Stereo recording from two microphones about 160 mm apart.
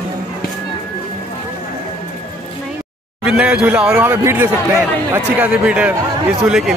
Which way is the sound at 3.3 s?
5° right (ahead or behind).